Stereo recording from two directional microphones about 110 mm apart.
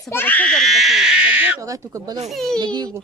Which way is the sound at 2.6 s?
40° right (ahead or behind).